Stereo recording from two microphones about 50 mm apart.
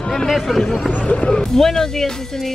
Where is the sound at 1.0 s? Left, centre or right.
Left.